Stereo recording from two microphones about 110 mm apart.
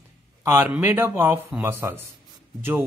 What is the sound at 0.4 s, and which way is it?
A man's voice, 25° right (ahead or behind).